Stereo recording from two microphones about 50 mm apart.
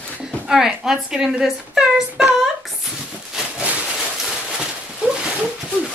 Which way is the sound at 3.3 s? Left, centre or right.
Right.